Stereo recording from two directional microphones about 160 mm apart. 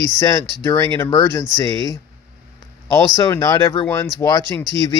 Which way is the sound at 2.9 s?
20° left (ahead or behind).